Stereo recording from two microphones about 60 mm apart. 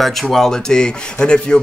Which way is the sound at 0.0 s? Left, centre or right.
Centre.